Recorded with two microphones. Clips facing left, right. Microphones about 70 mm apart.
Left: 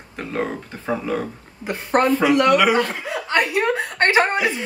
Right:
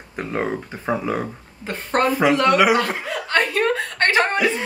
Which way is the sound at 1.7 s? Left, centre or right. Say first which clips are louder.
Left 2 dB; centre.